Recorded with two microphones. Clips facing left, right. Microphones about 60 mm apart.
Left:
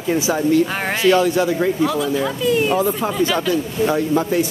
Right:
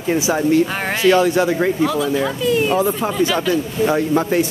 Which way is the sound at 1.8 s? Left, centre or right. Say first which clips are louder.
Right 1 dB; centre.